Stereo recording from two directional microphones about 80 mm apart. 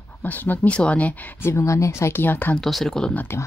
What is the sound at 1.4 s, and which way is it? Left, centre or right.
Speech, left.